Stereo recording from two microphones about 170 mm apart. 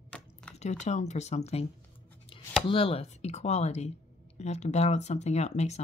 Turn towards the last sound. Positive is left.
turn(degrees=40)  # may be behind; listen again after turning